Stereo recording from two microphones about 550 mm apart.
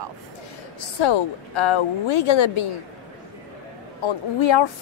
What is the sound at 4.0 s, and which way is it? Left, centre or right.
Speech, left.